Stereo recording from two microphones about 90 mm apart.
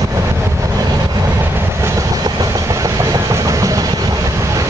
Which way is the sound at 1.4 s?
25° right (ahead or behind).